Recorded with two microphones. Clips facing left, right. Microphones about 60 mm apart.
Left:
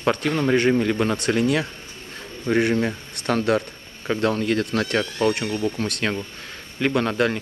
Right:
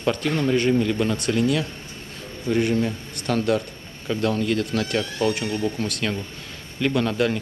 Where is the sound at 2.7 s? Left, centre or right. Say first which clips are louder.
Left 1 dB; left.